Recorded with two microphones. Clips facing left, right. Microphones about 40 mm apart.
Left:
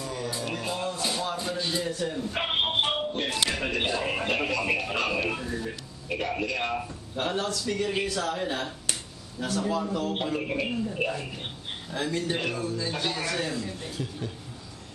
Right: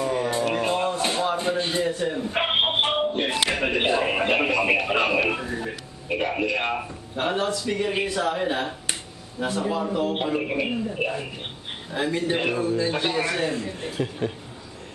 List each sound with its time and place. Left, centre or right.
0.0 s speech: right
13.7 s speech: right